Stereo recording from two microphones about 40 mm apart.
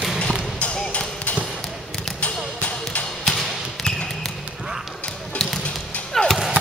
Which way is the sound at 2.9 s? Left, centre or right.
Left.